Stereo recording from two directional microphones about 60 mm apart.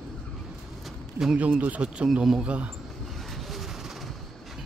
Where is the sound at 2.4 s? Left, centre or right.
Right.